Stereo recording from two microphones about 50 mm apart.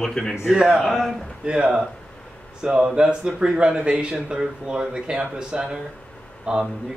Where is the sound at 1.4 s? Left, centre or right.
Centre.